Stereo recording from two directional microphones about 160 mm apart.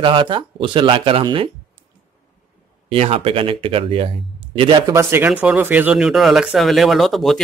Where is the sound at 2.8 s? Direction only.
40° right (ahead or behind).